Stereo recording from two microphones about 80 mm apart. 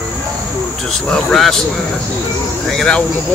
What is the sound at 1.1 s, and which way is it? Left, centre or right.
Speech, centre.